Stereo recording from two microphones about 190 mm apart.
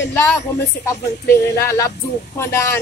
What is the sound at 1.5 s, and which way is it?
A woman's voice, 15° left (ahead or behind).